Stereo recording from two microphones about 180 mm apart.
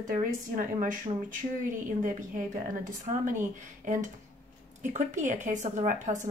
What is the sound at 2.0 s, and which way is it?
Speech, 45° right (ahead or behind).